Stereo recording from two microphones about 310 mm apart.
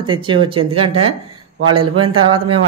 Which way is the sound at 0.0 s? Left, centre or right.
Centre.